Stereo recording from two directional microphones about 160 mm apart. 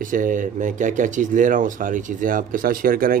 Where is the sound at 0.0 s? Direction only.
55° right (ahead or behind).